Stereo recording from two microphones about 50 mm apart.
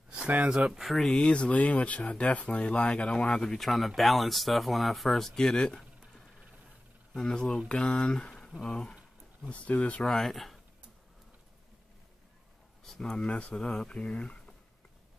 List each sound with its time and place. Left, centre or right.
0.5 s speech: centre
0.7 s speech: centre
1.1 s speech: left
3.6 s speech: centre
9.5 s speech: left
10.0 s speech: centre
12.8 s speech: centre